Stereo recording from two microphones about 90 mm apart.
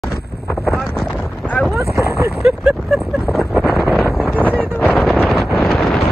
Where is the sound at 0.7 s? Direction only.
5° left (ahead or behind).